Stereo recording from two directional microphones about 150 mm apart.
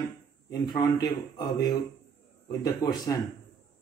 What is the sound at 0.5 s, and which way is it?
A man's voice, 25° left (ahead or behind).